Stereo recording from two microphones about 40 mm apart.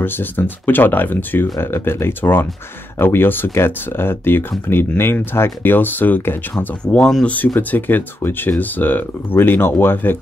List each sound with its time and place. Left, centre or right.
0.0 s speech: left
1.6 s speech: left
6.8 s speech: left
7.2 s speech: left